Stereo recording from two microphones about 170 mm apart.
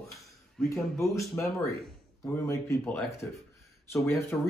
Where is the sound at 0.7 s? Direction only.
15° left (ahead or behind).